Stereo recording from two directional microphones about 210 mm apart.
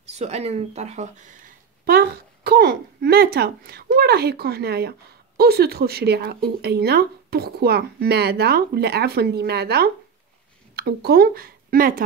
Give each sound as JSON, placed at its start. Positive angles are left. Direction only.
{"t": 0.1, "sound": "speech", "side_deg": -30}